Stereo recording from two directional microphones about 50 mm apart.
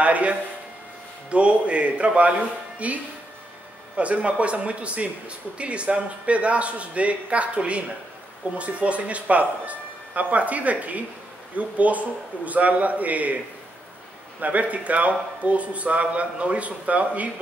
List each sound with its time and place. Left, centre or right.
0.0 s a man's voice: right
14.4 s speech: right